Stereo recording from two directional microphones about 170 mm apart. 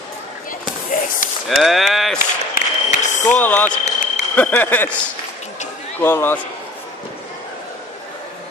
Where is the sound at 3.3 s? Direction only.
10° left (ahead or behind).